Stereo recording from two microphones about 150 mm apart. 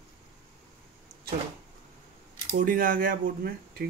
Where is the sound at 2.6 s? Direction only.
70° right (ahead or behind).